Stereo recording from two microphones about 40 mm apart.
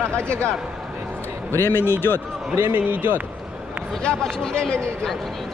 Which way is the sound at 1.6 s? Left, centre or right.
Left.